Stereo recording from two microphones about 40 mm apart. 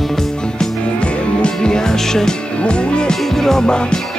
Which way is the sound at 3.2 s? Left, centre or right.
Centre.